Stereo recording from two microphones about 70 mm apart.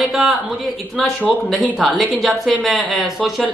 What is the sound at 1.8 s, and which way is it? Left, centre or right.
A man's voice, centre.